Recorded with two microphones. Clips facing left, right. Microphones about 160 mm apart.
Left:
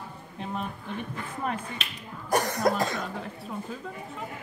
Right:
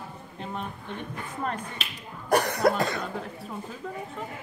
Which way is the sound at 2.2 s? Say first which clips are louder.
Right 2 dB; 65° right (ahead or behind).